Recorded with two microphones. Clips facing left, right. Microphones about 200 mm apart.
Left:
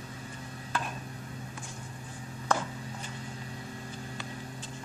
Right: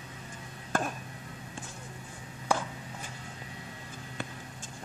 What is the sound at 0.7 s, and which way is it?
Music, 50° right (ahead or behind).